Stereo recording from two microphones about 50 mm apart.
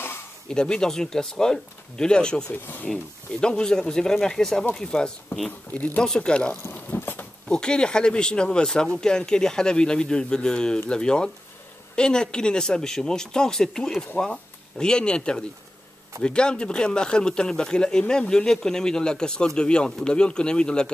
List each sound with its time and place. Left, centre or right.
0.5 s speech: centre
2.5 s speech: left
3.3 s speech: centre
5.7 s speech: left
6.7 s a sound: left
7.4 s speech: centre